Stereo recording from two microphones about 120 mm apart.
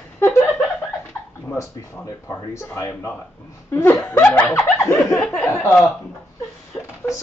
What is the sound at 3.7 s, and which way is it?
Laughter, 15° left (ahead or behind).